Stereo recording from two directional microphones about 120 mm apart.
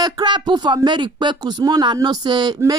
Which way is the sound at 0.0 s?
40° right (ahead or behind).